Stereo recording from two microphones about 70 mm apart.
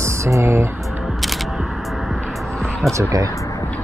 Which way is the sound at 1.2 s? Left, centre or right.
Centre.